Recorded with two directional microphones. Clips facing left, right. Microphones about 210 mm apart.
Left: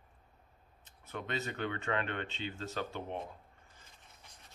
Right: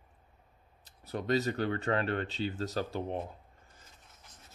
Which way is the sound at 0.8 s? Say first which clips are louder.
Right 8 dB; 35° right (ahead or behind).